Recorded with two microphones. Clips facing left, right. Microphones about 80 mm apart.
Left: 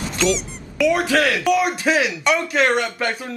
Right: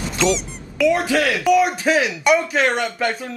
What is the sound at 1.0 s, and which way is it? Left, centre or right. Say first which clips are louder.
Speech: left 1 dB; right.